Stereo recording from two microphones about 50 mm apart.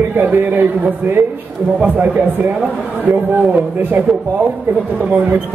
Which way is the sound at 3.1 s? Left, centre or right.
Right.